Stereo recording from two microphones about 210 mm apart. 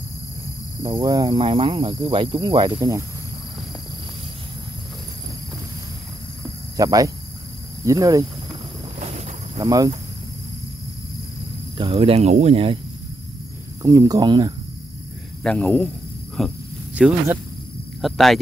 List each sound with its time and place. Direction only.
1.0 s cricket: 15° right (ahead or behind)
6.8 s speech: 15° right (ahead or behind)
9.6 s speech: 15° right (ahead or behind)
11.8 s cricket: 25° right (ahead or behind)
13.8 s speech: 15° right (ahead or behind)
15.4 s speech: 5° left (ahead or behind)
16.3 s cricket: centre (ahead or behind)
18.0 s speech: centre (ahead or behind)